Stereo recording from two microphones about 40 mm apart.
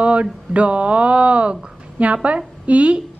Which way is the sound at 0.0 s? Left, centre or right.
Right.